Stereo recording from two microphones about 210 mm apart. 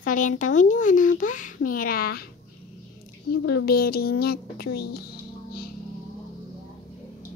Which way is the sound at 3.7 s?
45° left (ahead or behind).